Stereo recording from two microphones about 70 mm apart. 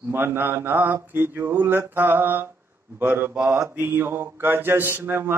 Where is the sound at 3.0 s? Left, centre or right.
Right.